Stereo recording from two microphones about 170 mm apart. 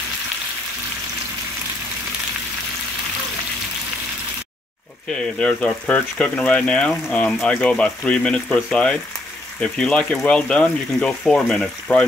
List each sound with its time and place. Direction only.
5.1 s speech: 5° left (ahead or behind)